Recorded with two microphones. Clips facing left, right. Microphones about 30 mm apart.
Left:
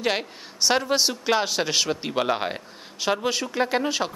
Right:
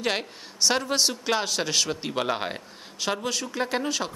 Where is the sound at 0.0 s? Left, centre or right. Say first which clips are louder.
Left 2 dB; centre.